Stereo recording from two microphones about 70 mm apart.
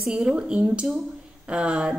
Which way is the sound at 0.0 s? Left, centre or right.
Centre.